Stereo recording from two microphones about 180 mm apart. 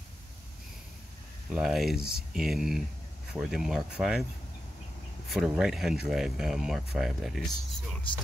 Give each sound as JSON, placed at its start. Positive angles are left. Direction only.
{"t": 1.5, "sound": "speech", "side_deg": 0}
{"t": 5.3, "sound": "speech", "side_deg": 0}